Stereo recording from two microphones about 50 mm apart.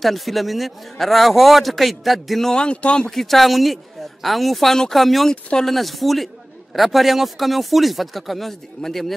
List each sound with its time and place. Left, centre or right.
0.0 s a man's voice: centre
2.5 s speech: left
3.2 s a man's voice: centre
5.3 s speech: centre
5.7 s a man's voice: centre